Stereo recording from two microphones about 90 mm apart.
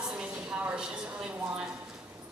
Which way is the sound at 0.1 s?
10° right (ahead or behind).